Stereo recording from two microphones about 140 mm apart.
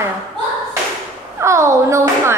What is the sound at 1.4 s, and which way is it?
Speech, 20° right (ahead or behind).